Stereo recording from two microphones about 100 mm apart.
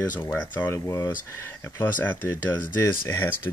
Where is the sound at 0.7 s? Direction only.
25° left (ahead or behind).